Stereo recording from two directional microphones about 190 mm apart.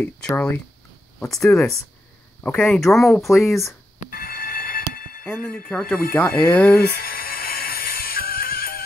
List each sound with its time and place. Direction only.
0.0 s speech: 5° left (ahead or behind)
4.1 s a sound: 50° left (ahead or behind)
5.5 s speech: 5° left (ahead or behind)
6.8 s music: 50° left (ahead or behind)